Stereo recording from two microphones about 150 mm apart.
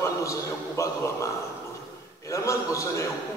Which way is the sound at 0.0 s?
20° left (ahead or behind).